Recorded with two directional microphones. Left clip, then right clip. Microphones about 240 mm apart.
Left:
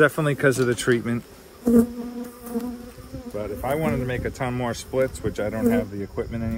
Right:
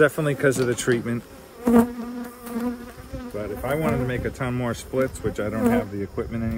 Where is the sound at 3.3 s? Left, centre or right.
Centre.